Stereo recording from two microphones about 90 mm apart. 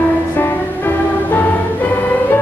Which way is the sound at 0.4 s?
25° left (ahead or behind).